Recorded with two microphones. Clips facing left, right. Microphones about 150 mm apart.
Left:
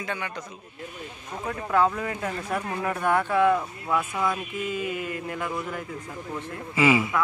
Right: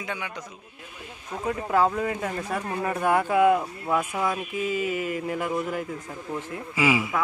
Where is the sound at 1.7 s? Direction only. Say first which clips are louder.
Even; 5° right (ahead or behind).